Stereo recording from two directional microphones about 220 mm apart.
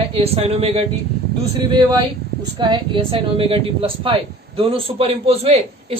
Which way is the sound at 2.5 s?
20° right (ahead or behind).